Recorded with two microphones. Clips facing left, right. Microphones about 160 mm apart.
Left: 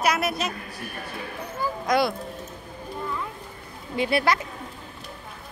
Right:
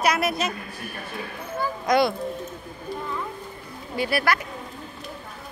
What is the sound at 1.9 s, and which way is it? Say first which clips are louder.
Speech: right 2 dB; centre (ahead or behind).